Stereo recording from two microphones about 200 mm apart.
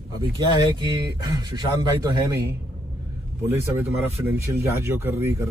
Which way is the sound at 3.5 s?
10° right (ahead or behind).